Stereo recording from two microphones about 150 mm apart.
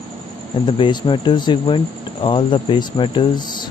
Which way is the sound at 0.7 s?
35° left (ahead or behind).